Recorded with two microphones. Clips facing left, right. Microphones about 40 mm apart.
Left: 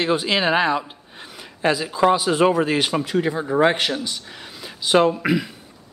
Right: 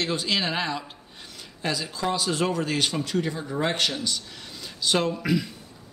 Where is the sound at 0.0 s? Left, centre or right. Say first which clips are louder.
Left 6 dB; centre.